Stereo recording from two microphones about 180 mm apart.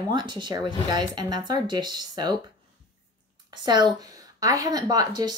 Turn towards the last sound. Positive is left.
turn(degrees=-20)  # may be behind; listen again after turning